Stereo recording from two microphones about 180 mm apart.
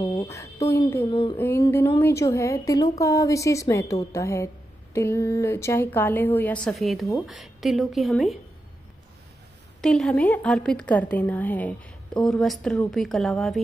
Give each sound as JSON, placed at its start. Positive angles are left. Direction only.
{"t": 0.0, "sound": "speech", "side_deg": 20}
{"t": 1.1, "sound": "a sound", "side_deg": 30}
{"t": 1.4, "sound": "a woman's voice", "side_deg": 15}
{"t": 9.8, "sound": "a woman's voice", "side_deg": 5}